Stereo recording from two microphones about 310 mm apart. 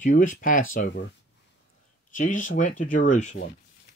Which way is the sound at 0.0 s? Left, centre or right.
Left.